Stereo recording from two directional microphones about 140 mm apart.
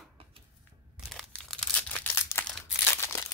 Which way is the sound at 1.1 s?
5° left (ahead or behind).